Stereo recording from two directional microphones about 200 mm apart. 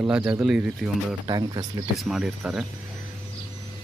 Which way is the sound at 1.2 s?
20° right (ahead or behind).